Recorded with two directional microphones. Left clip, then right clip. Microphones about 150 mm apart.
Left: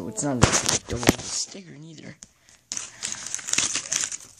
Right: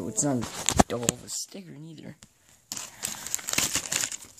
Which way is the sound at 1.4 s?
5° right (ahead or behind).